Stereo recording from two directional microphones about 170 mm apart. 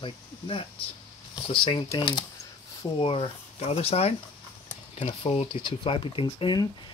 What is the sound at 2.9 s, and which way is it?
Speech, 30° left (ahead or behind).